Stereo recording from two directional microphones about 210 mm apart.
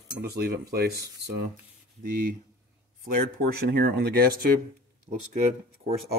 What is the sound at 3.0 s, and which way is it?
Cutlery, 45° right (ahead or behind).